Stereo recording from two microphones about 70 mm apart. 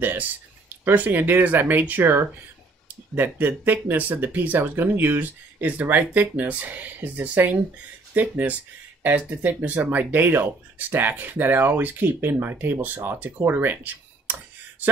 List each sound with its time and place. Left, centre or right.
0.0 s speech: right